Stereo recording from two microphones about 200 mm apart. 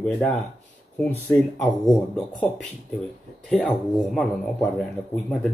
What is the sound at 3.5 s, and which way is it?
Speech, 5° left (ahead or behind).